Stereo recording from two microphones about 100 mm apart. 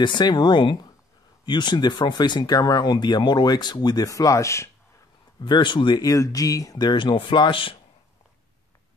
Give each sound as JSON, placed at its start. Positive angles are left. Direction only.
{"t": 0.0, "sound": "speech", "side_deg": 50}
{"t": 5.4, "sound": "speech", "side_deg": 50}
{"t": 6.0, "sound": "speech", "side_deg": 35}
{"t": 6.9, "sound": "speech", "side_deg": 55}